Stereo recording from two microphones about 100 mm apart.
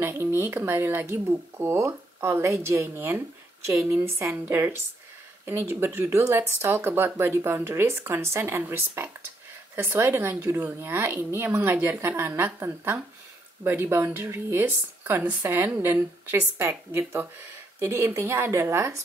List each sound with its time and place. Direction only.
0.0 s speech: 20° right (ahead or behind)